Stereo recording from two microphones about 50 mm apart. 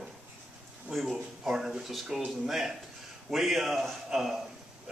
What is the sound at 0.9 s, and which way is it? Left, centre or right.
Speech, centre.